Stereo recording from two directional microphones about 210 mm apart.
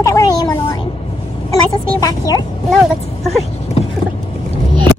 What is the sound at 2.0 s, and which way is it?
Speech, 15° left (ahead or behind).